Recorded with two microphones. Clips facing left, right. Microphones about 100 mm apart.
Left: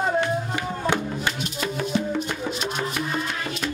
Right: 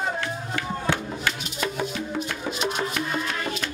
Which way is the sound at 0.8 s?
20° left (ahead or behind).